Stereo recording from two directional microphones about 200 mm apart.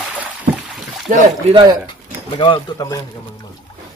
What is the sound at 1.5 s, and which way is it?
Speech, 20° right (ahead or behind).